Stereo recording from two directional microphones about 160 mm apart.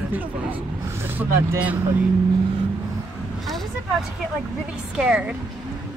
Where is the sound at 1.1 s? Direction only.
10° right (ahead or behind).